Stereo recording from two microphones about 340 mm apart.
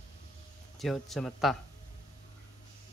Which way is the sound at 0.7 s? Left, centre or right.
Centre.